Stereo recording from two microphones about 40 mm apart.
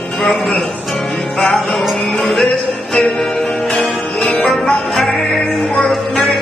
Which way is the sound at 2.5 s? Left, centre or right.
Left.